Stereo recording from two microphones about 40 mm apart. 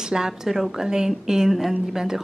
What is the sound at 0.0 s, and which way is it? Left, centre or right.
A woman's voice, centre.